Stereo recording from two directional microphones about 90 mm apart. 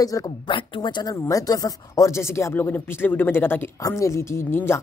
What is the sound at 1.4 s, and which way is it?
A woman's voice, 45° left (ahead or behind).